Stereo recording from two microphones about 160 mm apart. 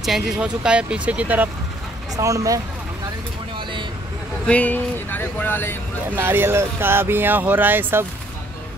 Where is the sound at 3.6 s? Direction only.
30° right (ahead or behind).